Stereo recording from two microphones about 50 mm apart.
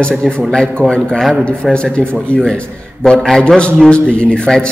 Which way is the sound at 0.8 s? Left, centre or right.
Right.